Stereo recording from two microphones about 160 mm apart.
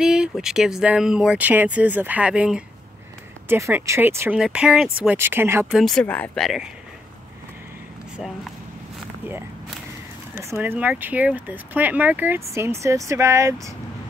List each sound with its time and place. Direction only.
0.0 s speech: 5° right (ahead or behind)
5.8 s speech: 5° left (ahead or behind)
10.3 s speech: 15° right (ahead or behind)